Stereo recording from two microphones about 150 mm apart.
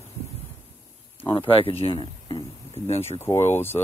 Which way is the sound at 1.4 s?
40° left (ahead or behind).